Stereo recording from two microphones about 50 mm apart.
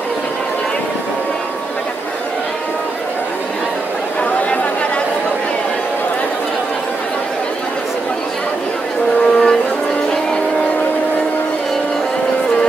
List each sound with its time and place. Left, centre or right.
9.2 s vehicle: centre